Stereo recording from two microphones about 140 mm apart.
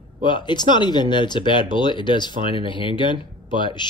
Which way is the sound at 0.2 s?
35° left (ahead or behind).